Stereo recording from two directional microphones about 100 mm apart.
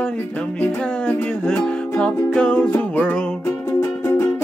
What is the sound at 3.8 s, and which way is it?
Music, 25° left (ahead or behind).